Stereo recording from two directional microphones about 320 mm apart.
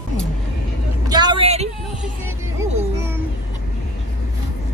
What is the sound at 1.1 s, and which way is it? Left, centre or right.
Speech, centre.